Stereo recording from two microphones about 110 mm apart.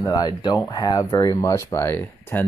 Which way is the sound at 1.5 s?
30° left (ahead or behind).